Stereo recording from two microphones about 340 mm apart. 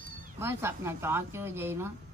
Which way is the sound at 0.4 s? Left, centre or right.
Centre.